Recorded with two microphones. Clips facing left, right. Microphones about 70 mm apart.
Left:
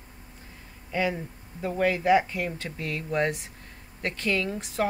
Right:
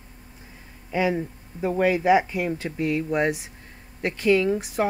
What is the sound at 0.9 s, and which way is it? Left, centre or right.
Speech, centre.